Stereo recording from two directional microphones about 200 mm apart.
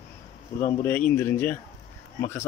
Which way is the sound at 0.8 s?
10° left (ahead or behind).